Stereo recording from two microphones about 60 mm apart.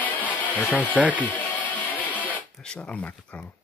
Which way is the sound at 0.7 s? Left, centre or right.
Left.